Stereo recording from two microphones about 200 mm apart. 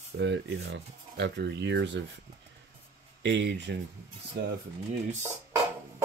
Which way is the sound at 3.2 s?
60° right (ahead or behind).